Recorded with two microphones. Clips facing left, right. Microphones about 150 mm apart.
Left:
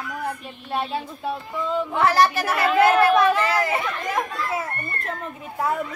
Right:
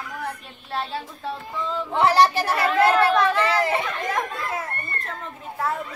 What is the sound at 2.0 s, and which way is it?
Speech, 30° right (ahead or behind).